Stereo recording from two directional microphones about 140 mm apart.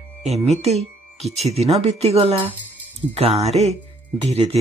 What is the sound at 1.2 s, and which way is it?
Speech, 50° right (ahead or behind).